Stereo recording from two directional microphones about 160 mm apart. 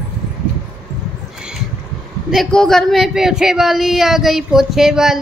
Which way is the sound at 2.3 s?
Centre (ahead or behind).